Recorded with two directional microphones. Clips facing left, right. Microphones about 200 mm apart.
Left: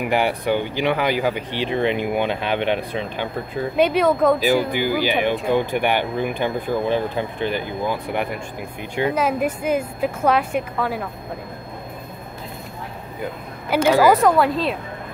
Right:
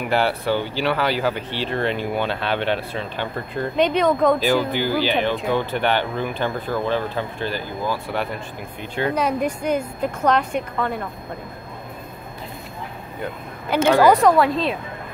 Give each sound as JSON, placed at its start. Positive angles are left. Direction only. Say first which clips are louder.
{"t": 0.1, "sound": "speech", "louder": "even", "side_deg": 15}
{"t": 9.1, "sound": "speech", "louder": "left 1 dB", "side_deg": 5}
{"t": 13.7, "sound": "speech", "louder": "even", "side_deg": 5}